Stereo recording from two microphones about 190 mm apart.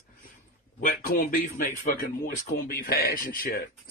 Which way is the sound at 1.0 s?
45° left (ahead or behind).